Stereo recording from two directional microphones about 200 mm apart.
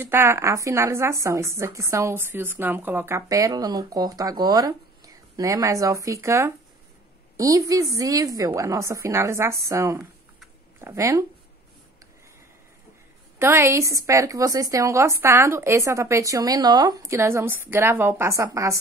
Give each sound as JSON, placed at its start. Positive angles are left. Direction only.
{"t": 0.0, "sound": "a woman's voice", "side_deg": -10}
{"t": 13.4, "sound": "a woman's voice", "side_deg": -15}